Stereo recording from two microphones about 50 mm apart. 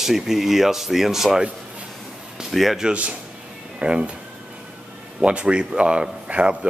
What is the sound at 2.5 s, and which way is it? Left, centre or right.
Speech, centre.